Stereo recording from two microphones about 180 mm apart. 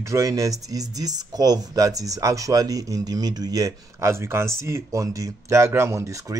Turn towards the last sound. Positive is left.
turn(degrees=-15)  # may be behind; listen again after turning